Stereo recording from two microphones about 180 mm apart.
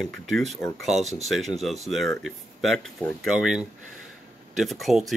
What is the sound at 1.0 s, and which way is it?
Speech, 40° right (ahead or behind).